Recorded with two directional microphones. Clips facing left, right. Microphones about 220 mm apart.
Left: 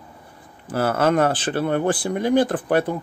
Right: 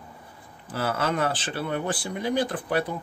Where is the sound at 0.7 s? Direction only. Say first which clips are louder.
Left 8 dB; 50° left (ahead or behind).